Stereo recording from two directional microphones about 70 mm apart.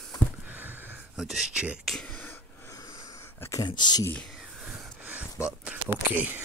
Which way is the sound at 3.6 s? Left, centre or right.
Left.